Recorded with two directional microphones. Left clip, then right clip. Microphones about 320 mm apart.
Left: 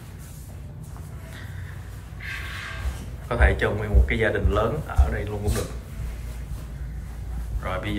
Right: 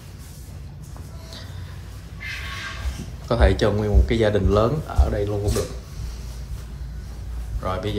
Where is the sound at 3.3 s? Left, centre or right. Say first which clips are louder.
Right 3 dB; centre.